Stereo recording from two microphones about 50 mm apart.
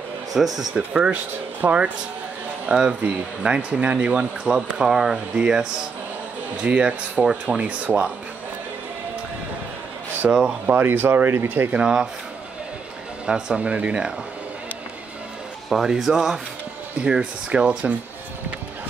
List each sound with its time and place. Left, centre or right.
0.3 s speech: centre
0.7 s speech: centre
1.1 s speech: right
2.7 s speech: centre
4.7 s speech: centre; by 8.1 s right
10.2 s speech: centre
10.7 s speech: right
11.7 s speech: centre
13.6 s speech: right
15.7 s speech: centre
17.0 s speech: right